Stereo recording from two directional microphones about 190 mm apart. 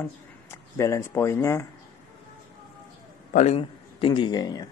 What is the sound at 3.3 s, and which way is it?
A man's voice, 35° left (ahead or behind).